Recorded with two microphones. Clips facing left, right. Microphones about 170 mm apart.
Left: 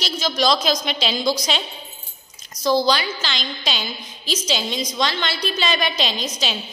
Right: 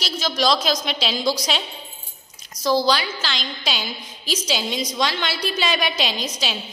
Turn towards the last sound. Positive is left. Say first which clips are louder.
# left 1 dB
turn(degrees=-5)  # may be behind; listen again after turning